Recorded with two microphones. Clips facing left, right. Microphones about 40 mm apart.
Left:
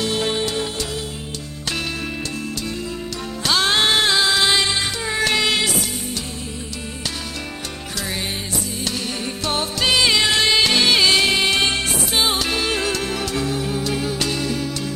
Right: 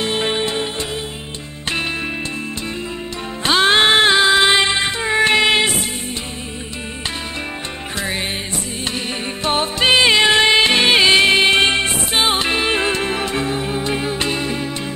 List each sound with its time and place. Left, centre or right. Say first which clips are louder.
0.0 s music: right 2 dB; right
3.4 s music: right 5 dB; right
9.4 s music: right 5 dB; right